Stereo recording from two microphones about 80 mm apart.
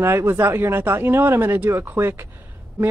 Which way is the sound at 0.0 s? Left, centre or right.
Right.